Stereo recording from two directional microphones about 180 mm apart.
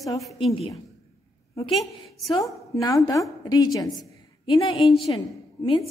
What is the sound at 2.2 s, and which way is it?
A woman's voice, 20° left (ahead or behind).